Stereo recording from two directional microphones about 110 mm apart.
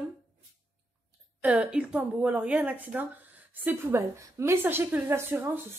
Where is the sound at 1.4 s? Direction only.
10° right (ahead or behind).